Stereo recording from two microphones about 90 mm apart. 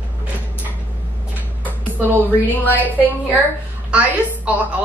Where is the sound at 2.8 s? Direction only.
20° left (ahead or behind).